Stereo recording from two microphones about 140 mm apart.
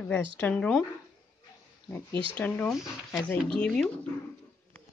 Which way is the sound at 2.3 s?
10° left (ahead or behind).